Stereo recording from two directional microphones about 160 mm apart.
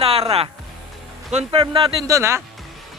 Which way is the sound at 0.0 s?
40° right (ahead or behind).